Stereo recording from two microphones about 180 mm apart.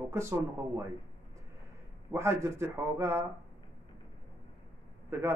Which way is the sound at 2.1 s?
15° right (ahead or behind).